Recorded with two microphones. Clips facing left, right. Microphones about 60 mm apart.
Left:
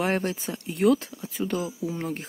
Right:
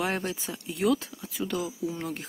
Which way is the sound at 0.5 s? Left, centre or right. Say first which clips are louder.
Left 4 dB; left.